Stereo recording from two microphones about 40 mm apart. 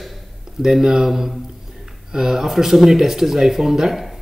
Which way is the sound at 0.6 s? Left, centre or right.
Centre.